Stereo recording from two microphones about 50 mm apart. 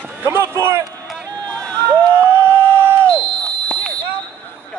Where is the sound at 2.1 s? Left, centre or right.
Right.